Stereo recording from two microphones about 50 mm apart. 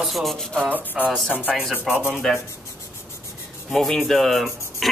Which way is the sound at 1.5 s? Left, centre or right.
Centre.